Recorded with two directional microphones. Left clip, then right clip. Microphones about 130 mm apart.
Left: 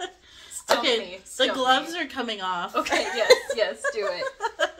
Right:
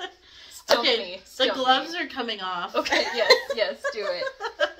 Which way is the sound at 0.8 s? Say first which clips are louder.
Right 1 dB; 45° left (ahead or behind).